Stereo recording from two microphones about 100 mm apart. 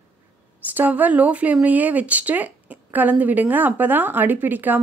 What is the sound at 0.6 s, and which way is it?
A woman's voice, 15° right (ahead or behind).